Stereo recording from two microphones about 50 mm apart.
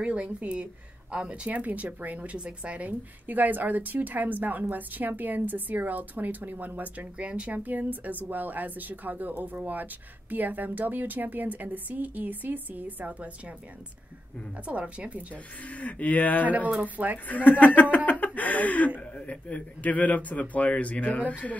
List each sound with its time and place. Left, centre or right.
0.0 s speech: right
2.9 s a woman's voice: right
14.6 s speech: right
15.6 s a man's voice: left
16.4 s a woman's voice: right
17.3 s a man's voice: left